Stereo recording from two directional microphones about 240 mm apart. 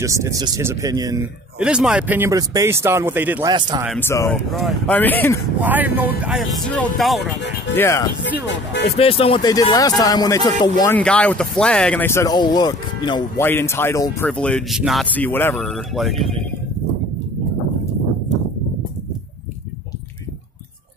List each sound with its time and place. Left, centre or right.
0.0 s speech: centre
1.6 s speech: centre
3.5 s speech: centre
3.8 s speech: centre
4.1 s speech: centre
4.5 s speech: centre
5.6 s speech: centre
7.7 s speech: centre
8.4 s speech: left
8.9 s speech: left; by 16.2 s centre